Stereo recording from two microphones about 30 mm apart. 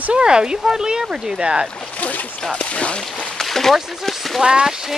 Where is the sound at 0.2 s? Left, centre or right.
Right.